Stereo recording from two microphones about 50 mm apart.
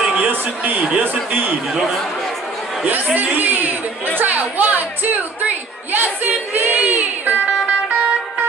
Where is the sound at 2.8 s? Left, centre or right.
Right.